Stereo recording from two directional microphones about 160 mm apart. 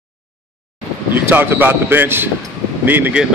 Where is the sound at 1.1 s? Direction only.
15° right (ahead or behind).